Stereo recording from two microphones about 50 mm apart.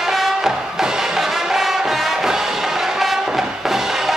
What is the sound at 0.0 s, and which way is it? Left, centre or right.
Music, centre.